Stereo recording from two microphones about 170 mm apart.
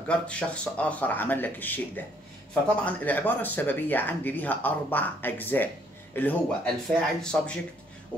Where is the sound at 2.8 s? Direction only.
10° left (ahead or behind).